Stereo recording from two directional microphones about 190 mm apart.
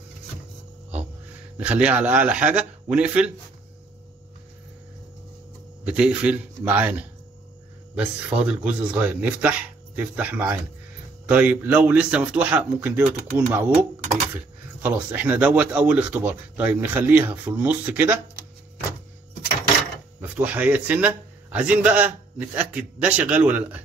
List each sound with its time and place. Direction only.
1.6 s speech: 5° right (ahead or behind)
5.9 s speech: 5° right (ahead or behind)
20.2 s speech: 10° right (ahead or behind)